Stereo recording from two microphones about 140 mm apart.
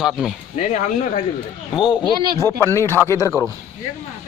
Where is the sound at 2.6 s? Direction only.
15° left (ahead or behind).